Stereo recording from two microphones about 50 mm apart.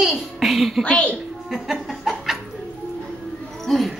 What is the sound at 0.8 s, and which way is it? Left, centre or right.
Speech, left.